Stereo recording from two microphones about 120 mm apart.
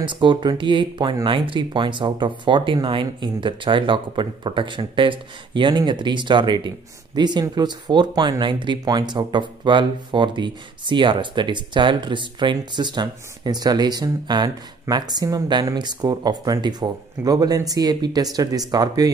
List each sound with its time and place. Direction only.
0.0 s speech: 40° right (ahead or behind)